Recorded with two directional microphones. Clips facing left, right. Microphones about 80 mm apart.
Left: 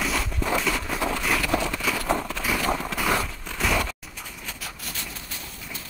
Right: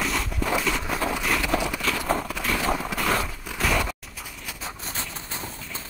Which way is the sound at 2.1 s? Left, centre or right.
Centre.